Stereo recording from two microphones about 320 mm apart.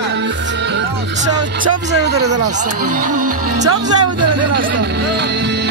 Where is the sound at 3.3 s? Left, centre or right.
Right.